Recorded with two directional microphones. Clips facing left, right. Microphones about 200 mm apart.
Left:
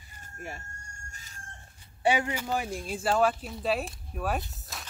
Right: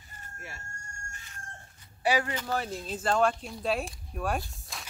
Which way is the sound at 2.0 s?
20° left (ahead or behind).